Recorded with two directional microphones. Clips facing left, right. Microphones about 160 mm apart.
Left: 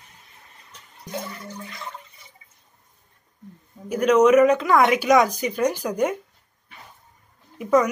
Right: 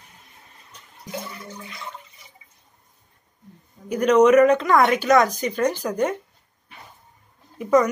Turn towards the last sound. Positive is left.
turn(degrees=5)  # may be behind; listen again after turning